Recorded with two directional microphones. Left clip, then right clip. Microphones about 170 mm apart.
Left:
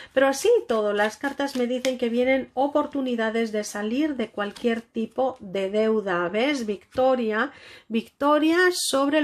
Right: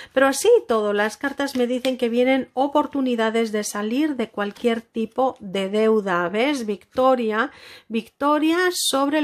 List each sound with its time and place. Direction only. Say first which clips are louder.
0.1 s speech: right 3 dB; 25° right (ahead or behind)